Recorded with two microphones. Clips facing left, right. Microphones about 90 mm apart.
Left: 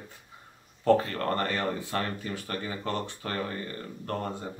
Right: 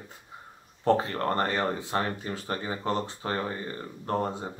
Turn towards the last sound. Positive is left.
turn(degrees=-25)  # may be behind; listen again after turning